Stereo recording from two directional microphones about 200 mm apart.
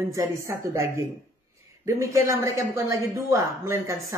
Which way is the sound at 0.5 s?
15° right (ahead or behind).